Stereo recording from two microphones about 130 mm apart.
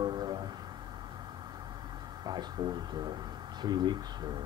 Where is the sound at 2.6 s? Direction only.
35° right (ahead or behind).